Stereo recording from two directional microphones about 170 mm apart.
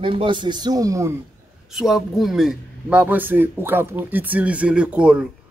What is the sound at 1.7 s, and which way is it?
A man's voice, centre (ahead or behind).